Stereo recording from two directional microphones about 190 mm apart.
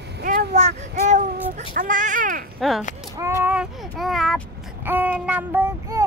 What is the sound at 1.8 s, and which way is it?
Speech, 45° right (ahead or behind).